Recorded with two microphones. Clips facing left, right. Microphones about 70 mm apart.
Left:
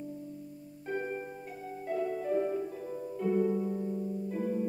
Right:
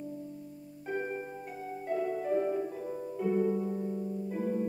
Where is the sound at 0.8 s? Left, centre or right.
Centre.